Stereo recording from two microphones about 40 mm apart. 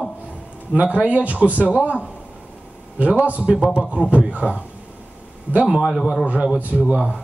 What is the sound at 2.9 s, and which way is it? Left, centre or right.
Speech, right.